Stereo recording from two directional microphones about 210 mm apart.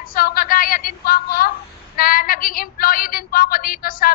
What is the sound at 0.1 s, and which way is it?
A woman's voice, 45° left (ahead or behind).